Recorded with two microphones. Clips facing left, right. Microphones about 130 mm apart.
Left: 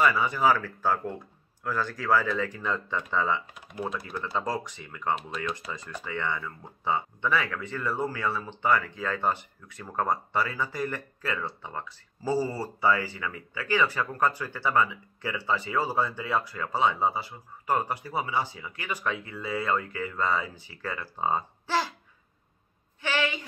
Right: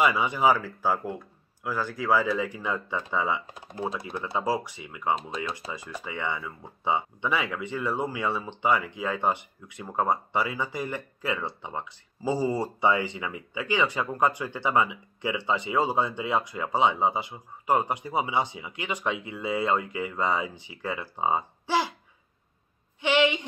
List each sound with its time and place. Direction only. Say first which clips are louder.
0.0 s speech: right 1 dB; 15° right (ahead or behind)
3.4 s speech: even; 35° right (ahead or behind)
3.8 s speech: right 1 dB; 25° right (ahead or behind)
22.9 s a woman's voice: right 6 dB; 20° right (ahead or behind)